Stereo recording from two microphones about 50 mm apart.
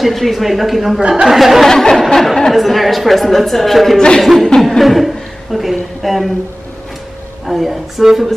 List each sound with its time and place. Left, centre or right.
0.0 s a woman's voice: centre
1.0 s speech: centre
1.3 s a woman's voice: centre
1.7 s a woman's voice: centre
7.4 s a woman's voice: centre